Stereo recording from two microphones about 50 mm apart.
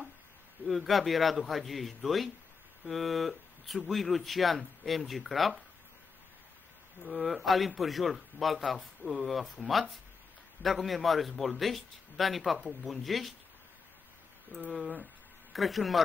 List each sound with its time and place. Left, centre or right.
0.7 s a man's voice: centre
7.1 s a man's voice: centre
14.5 s speech: left
15.5 s a man's voice: centre